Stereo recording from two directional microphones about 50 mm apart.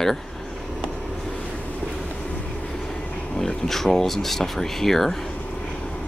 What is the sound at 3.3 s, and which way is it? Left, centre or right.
Speech, centre.